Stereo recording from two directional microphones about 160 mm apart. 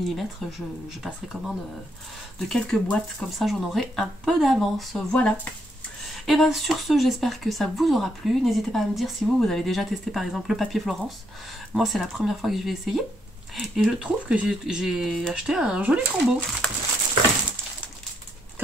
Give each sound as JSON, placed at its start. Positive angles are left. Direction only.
{"t": 0.1, "sound": "speech", "side_deg": 0}